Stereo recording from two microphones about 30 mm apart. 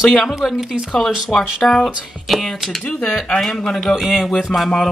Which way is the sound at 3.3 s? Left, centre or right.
Centre.